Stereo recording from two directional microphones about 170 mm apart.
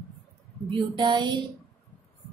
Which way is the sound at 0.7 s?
25° right (ahead or behind).